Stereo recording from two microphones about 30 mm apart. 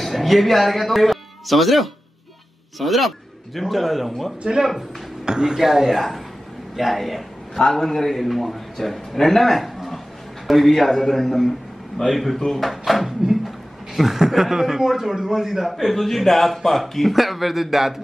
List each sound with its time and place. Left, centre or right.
0.0 s a man's voice: centre
5.2 s speech: right
5.6 s speech: centre
5.9 s a man's voice: centre